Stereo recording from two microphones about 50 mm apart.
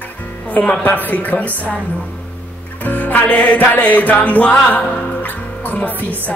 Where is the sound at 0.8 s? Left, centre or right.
Left.